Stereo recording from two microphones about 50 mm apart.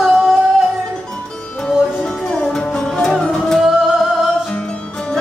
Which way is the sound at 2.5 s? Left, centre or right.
Centre.